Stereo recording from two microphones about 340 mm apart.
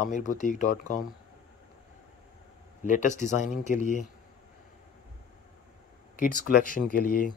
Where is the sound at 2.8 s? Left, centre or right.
Left.